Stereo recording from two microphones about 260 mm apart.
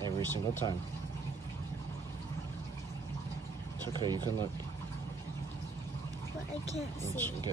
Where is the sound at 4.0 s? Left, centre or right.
Centre.